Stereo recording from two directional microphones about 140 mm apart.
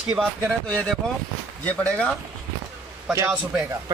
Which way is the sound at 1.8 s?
10° left (ahead or behind).